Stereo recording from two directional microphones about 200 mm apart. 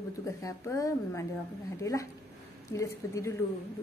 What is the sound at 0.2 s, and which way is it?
A woman's voice, 15° left (ahead or behind).